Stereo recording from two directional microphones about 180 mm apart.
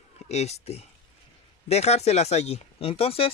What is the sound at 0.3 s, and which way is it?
Speech, 35° left (ahead or behind).